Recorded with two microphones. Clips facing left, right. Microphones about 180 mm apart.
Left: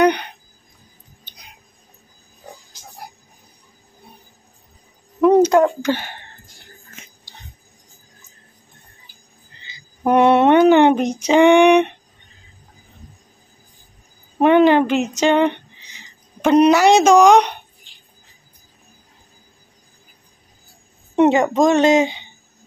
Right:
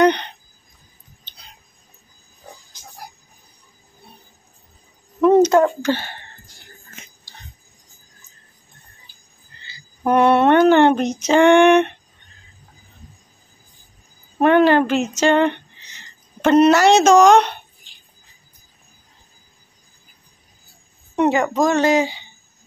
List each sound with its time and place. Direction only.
0.0 s speech: 10° left (ahead or behind)
1.2 s tick-tock: 15° left (ahead or behind)
5.2 s a sound: centre (ahead or behind)
5.5 s speech: 15° left (ahead or behind)
9.6 s speech: 15° left (ahead or behind)
14.4 s speech: 15° left (ahead or behind)
21.2 s speech: 25° left (ahead or behind)